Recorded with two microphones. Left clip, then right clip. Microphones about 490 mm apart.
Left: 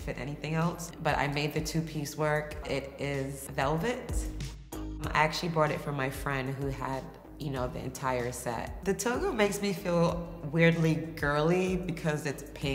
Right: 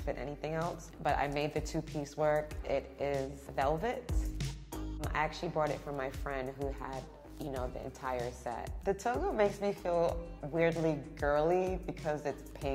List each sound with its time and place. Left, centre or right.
0.0 s a sound: right
1.0 s speech: right
5.1 s a woman's voice: right